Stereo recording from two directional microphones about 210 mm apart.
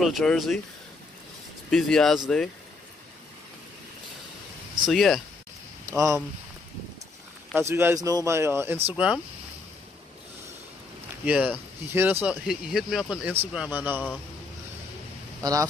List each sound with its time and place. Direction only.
0.0 s speech: centre (ahead or behind)
1.7 s speech: 5° left (ahead or behind)
4.8 s speech: centre (ahead or behind)
5.9 s speech: 15° right (ahead or behind)
7.5 s speech: 10° right (ahead or behind)
11.2 s speech: 5° right (ahead or behind)